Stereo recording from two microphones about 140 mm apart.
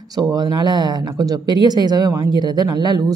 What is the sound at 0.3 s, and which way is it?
Speech, 30° right (ahead or behind).